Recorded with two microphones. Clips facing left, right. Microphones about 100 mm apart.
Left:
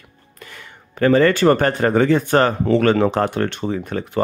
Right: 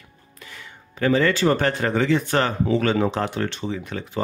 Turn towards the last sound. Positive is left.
turn(degrees=50)  # may be behind; listen again after turning